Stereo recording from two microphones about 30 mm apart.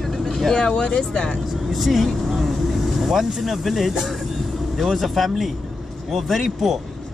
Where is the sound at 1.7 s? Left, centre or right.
Centre.